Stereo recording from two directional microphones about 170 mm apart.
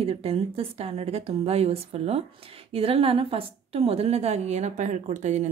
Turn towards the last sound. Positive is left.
turn(degrees=-45)  # may be behind; listen again after turning